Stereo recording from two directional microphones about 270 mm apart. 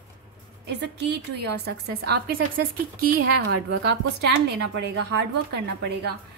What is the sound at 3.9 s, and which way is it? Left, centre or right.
A woman's voice, right.